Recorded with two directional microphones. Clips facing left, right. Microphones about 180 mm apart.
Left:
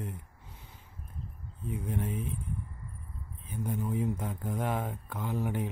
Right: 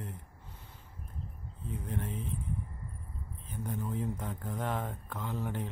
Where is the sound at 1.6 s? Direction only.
10° left (ahead or behind).